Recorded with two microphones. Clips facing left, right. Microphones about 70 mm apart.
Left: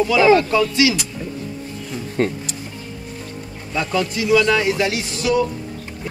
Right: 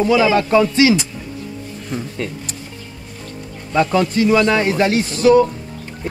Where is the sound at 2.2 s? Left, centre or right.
Left.